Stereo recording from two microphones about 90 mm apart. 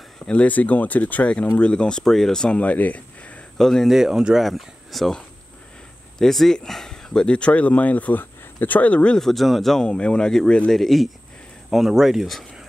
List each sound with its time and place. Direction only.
0.3 s speech: 15° left (ahead or behind)
3.5 s speech: 5° left (ahead or behind)